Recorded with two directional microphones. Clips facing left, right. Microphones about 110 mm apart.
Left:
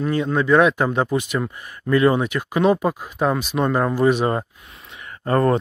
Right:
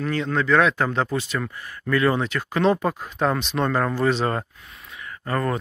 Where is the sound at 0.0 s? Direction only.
15° left (ahead or behind).